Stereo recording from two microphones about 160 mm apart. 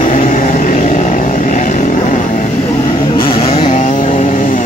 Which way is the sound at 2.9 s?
25° left (ahead or behind).